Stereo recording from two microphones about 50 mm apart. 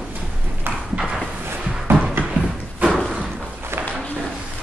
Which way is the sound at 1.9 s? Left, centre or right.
Right.